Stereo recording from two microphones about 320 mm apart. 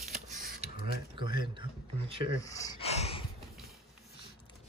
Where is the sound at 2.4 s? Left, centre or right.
Centre.